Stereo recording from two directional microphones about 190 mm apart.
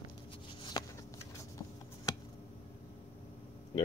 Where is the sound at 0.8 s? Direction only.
20° left (ahead or behind).